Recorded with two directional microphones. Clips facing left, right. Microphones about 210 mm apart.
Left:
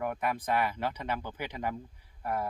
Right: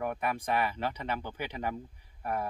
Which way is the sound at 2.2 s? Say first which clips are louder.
Left 1 dB; 10° right (ahead or behind).